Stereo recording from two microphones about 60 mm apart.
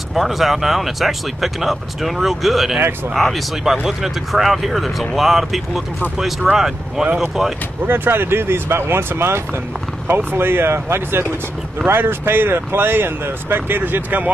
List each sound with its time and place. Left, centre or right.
0.1 s speech: centre
7.8 s speech: right